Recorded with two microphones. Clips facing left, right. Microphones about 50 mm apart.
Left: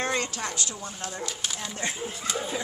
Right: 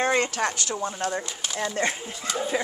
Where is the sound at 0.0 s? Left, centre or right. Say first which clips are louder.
Right 5 dB; right.